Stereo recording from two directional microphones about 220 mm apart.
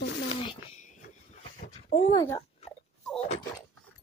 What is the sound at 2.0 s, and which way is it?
Speech, 20° left (ahead or behind).